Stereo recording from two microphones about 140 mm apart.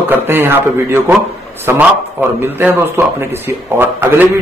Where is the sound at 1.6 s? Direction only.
15° right (ahead or behind).